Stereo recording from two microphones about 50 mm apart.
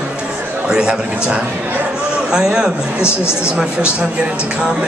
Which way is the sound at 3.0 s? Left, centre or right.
Left.